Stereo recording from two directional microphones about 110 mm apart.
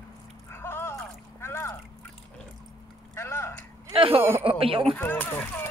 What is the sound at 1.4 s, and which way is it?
Boat, 20° left (ahead or behind).